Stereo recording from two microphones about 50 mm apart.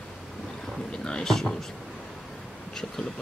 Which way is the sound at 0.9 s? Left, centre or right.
Centre.